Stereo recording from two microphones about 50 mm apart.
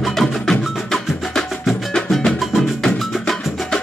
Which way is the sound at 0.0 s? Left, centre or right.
Centre.